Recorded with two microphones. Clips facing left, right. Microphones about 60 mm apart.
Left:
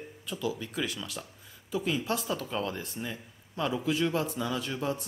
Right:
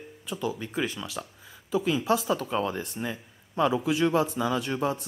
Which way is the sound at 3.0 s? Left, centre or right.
Right.